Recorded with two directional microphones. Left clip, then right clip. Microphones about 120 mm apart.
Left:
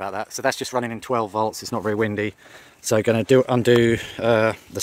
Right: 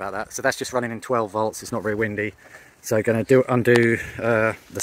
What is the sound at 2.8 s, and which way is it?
Speech, 30° left (ahead or behind).